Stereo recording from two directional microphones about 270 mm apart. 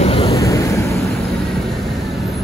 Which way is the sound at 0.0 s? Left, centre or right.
Left.